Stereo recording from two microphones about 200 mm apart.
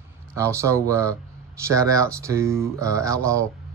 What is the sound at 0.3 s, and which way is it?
A man's voice, 15° right (ahead or behind).